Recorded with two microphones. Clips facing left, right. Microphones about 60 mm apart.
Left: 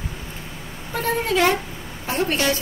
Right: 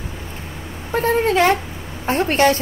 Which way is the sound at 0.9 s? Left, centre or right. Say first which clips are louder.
Right 5 dB; right.